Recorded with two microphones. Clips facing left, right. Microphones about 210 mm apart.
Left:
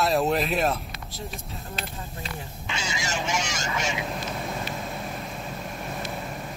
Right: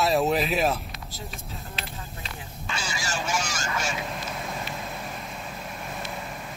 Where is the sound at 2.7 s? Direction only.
20° left (ahead or behind).